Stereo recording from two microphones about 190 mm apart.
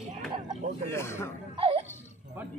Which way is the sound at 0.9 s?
15° left (ahead or behind).